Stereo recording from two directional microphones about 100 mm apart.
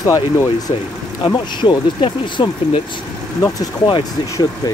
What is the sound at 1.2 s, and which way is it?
Speech, 50° left (ahead or behind).